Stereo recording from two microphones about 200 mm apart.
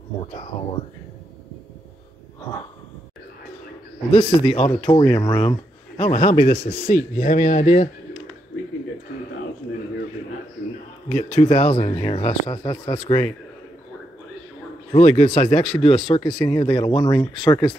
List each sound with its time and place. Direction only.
4.1 s speech: 25° left (ahead or behind)
4.9 s speech: 20° left (ahead or behind)
5.9 s speech: 35° left (ahead or behind)
11.3 s speech: 30° left (ahead or behind)
14.9 s speech: 35° left (ahead or behind)